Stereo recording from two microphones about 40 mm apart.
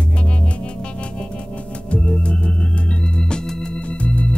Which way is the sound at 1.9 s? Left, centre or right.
Left.